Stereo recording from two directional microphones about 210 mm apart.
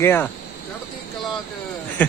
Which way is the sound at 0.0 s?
10° left (ahead or behind).